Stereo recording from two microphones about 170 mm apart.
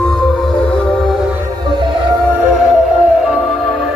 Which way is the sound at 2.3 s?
5° right (ahead or behind).